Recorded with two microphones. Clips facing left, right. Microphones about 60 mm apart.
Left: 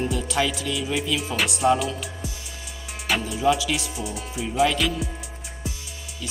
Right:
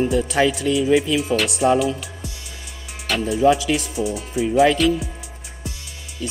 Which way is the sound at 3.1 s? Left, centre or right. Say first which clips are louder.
Right 2 dB; centre.